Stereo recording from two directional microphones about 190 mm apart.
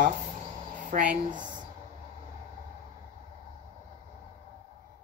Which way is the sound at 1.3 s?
25° right (ahead or behind).